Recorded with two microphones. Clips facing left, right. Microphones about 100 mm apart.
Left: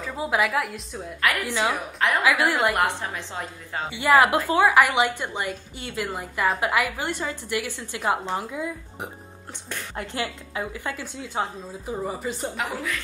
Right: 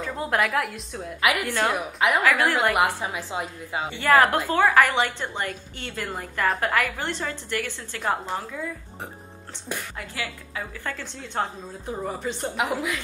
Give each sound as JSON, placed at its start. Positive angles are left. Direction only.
{"t": 0.0, "sound": "a woman's voice", "side_deg": 5}
{"t": 2.2, "sound": "a woman's voice", "side_deg": 10}
{"t": 2.5, "sound": "a woman's voice", "side_deg": 0}
{"t": 3.9, "sound": "a woman's voice", "side_deg": 10}
{"t": 9.9, "sound": "a woman's voice", "side_deg": 25}
{"t": 12.5, "sound": "a woman's voice", "side_deg": -15}